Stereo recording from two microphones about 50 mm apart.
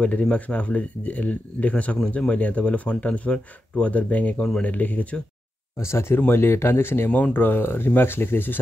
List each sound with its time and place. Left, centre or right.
0.0 s speech: left
5.8 s speech: left
6.1 s speech: left